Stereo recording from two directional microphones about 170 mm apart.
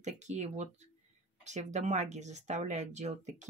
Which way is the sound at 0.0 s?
45° right (ahead or behind).